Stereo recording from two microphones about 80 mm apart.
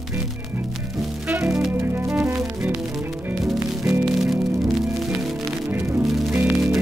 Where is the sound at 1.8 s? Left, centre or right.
Right.